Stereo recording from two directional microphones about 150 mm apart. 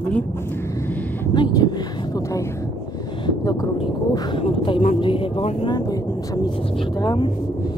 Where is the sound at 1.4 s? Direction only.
30° left (ahead or behind).